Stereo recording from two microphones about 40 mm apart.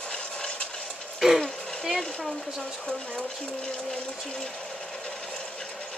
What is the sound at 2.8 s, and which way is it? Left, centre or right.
Speech, centre.